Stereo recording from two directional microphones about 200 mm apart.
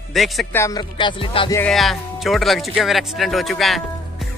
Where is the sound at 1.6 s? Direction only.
Centre (ahead or behind).